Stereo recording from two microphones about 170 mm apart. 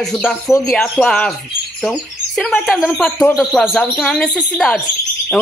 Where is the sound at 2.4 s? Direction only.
5° left (ahead or behind).